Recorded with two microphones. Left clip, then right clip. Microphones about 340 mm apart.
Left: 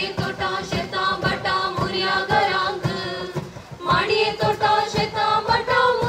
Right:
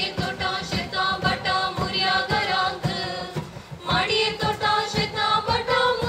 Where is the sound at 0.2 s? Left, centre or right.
Left.